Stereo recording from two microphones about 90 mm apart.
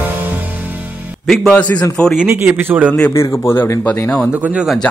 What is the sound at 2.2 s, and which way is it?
Speech, 20° right (ahead or behind).